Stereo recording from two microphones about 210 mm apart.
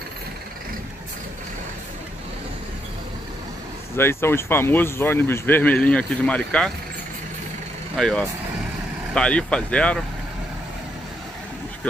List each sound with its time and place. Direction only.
3.9 s speech: 10° left (ahead or behind)
7.9 s speech: 5° left (ahead or behind)